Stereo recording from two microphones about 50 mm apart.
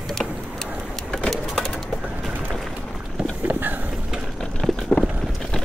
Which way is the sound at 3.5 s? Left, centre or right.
Right.